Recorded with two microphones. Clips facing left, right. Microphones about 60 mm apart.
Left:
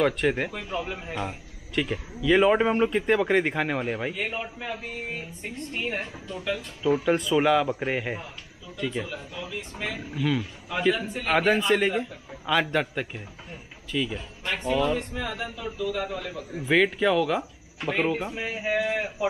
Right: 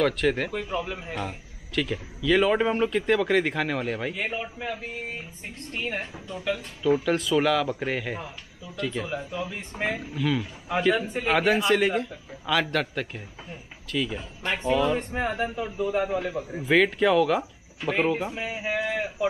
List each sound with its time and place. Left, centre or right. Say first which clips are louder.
0.0 s speech: even; centre
0.5 s speech: right 2 dB; centre
1.8 s speech: left 1 dB; centre
4.1 s speech: even; centre
9.0 s speech: right 5 dB; right
10.1 s speech: even; centre
14.1 s speech: right 2 dB; centre
15.0 s a man's voice: right 4 dB; right
16.5 s speech: right 1 dB; centre